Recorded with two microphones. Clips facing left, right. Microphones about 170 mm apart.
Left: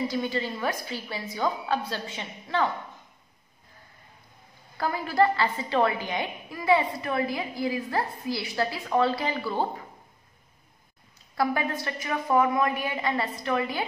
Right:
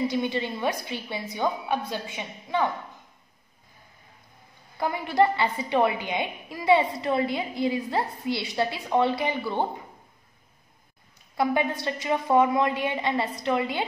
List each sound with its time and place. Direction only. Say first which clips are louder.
0.1 s a woman's voice: right 2 dB; 20° right (ahead or behind)
4.7 s a woman's voice: right 1 dB; 20° right (ahead or behind)
11.3 s a woman's voice: right 2 dB; 20° right (ahead or behind)